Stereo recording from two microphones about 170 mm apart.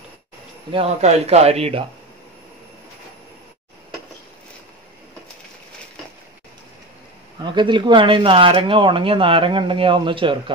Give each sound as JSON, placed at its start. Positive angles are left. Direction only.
{"t": 0.7, "sound": "speech", "side_deg": -35}
{"t": 7.4, "sound": "speech", "side_deg": -25}